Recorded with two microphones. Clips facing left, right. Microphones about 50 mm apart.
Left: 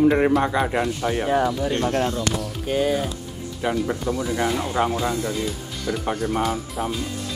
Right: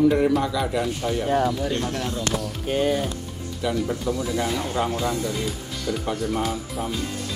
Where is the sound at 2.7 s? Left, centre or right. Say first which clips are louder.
Left 1 dB; centre.